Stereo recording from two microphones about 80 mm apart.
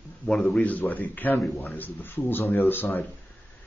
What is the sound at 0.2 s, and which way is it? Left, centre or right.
Speech, centre.